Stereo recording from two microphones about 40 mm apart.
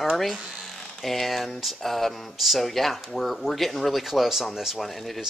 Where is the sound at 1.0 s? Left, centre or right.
Centre.